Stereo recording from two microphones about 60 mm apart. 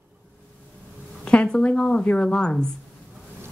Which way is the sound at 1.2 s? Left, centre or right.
Centre.